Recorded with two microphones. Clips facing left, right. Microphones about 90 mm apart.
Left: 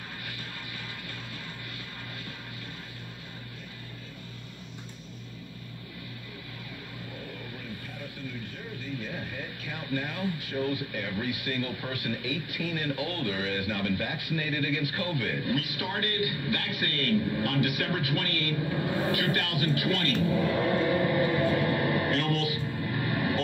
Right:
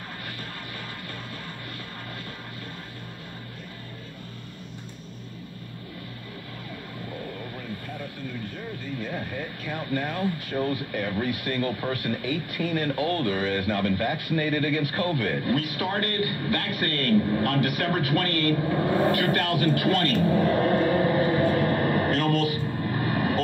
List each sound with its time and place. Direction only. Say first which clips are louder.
9.0 s speech: right 5 dB; 45° right (ahead or behind)